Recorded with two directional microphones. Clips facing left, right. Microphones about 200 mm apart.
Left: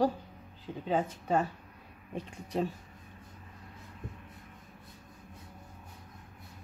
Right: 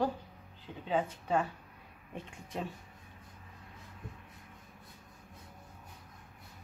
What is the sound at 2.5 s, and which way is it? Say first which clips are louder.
Speech: left 7 dB; 35° left (ahead or behind).